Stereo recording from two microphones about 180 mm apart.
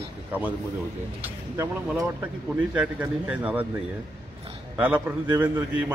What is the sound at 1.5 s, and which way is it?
A man's voice, 15° right (ahead or behind).